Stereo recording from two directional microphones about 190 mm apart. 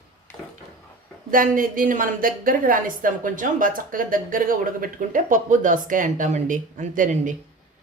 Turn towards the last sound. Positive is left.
turn(degrees=-40)  # may be behind; listen again after turning